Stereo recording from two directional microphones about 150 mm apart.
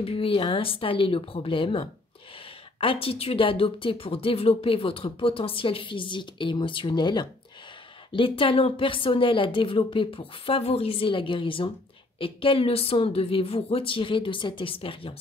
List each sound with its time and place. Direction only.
0.0 s a woman's voice: 40° left (ahead or behind)